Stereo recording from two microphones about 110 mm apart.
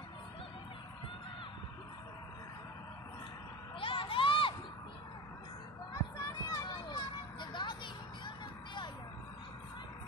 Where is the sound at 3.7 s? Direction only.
50° left (ahead or behind).